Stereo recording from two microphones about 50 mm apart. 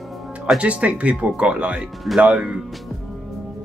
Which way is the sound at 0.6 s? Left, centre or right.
Right.